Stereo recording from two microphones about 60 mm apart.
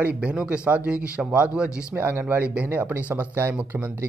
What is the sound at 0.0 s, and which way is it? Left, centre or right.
Speech, right.